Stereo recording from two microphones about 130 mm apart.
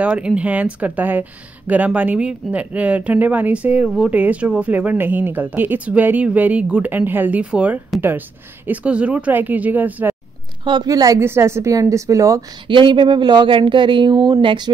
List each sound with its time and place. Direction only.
0.0 s speech: 10° right (ahead or behind)
10.6 s a woman's voice: 35° right (ahead or behind)
12.6 s speech: 40° right (ahead or behind)